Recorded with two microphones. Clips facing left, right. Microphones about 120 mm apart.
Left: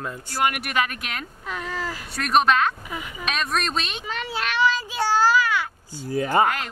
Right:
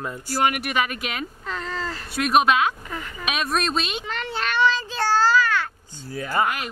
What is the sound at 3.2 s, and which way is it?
A child's voice, 5° right (ahead or behind).